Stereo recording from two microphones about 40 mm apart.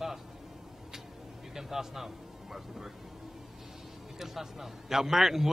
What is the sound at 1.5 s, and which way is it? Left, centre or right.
Speech, centre.